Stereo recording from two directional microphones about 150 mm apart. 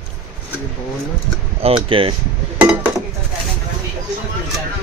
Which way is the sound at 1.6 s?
40° right (ahead or behind).